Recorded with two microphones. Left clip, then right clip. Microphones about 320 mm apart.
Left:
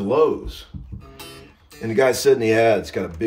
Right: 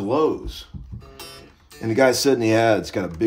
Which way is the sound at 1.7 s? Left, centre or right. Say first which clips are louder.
Right 1 dB; centre.